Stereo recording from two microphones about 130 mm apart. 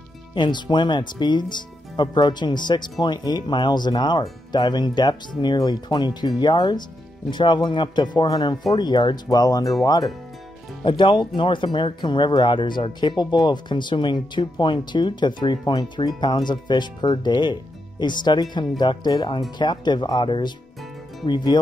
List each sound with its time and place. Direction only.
0.3 s speech: 35° left (ahead or behind)
10.8 s speech: 40° left (ahead or behind)